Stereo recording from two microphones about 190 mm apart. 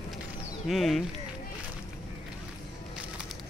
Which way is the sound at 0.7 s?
Centre (ahead or behind).